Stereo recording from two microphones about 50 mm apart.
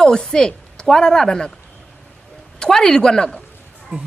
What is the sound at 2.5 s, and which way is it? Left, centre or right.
Speech, centre.